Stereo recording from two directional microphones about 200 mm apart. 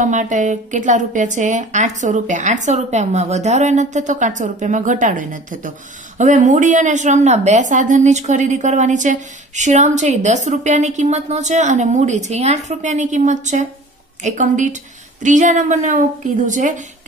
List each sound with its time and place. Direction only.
0.0 s a woman's voice: 40° right (ahead or behind)